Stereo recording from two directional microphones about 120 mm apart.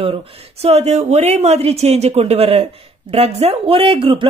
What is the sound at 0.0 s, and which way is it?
Speech, 55° right (ahead or behind).